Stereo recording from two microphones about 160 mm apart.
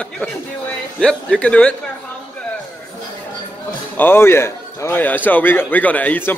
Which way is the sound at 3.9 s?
15° left (ahead or behind).